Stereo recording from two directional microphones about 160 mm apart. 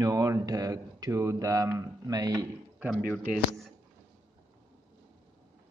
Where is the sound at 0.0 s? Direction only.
20° right (ahead or behind).